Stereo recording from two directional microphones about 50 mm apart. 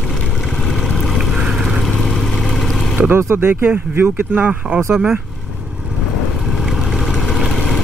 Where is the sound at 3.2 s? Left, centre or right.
Right.